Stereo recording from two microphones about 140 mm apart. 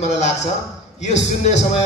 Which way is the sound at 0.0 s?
55° left (ahead or behind).